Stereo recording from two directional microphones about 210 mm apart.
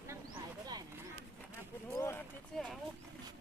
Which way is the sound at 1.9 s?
15° left (ahead or behind).